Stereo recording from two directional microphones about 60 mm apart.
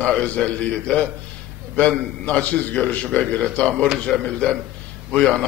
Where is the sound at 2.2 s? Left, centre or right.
Left.